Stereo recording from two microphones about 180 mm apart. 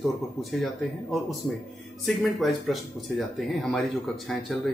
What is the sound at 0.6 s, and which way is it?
Speech, centre (ahead or behind).